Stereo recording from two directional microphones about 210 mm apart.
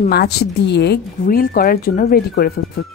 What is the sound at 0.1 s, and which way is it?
Speech, 50° left (ahead or behind).